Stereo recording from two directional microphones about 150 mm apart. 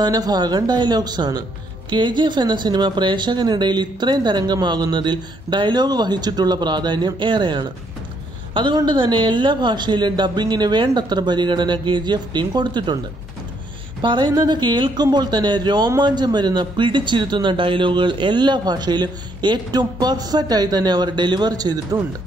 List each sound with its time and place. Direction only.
0.0 s speech: 25° right (ahead or behind)
14.0 s speech: 30° right (ahead or behind)